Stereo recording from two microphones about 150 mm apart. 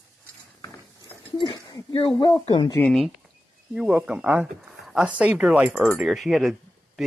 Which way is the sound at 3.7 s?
5° right (ahead or behind).